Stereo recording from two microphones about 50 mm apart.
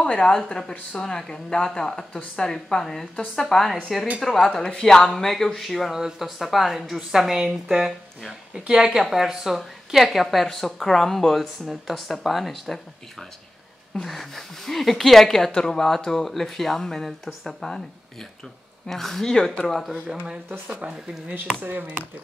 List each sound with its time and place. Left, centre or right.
0.0 s a woman's voice: centre
13.9 s a woman's voice: centre
18.9 s a woman's voice: centre
20.4 s speech: right